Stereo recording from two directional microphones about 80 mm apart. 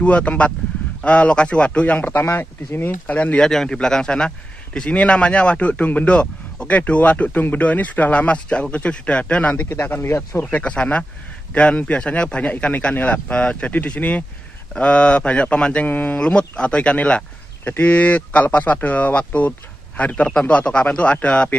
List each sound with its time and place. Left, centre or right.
0.0 s speech: centre
3.4 s speech: centre; by 10.4 s left
10.5 s speech: centre